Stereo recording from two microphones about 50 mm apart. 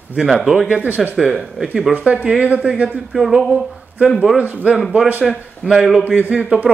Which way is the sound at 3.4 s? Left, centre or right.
Right.